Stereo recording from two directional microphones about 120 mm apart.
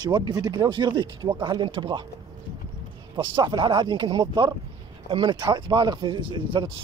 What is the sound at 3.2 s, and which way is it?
Speech, 45° right (ahead or behind).